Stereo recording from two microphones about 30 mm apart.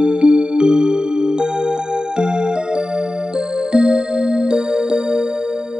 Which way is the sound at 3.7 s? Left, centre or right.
Right.